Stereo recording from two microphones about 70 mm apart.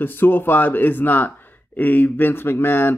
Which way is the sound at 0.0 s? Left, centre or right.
Left.